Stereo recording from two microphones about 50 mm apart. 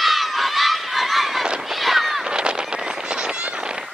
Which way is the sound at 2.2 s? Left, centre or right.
Centre.